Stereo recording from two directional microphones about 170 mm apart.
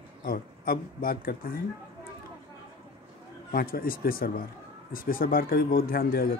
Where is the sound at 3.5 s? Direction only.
60° left (ahead or behind).